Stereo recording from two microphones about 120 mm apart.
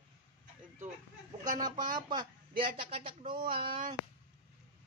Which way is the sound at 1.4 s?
35° right (ahead or behind).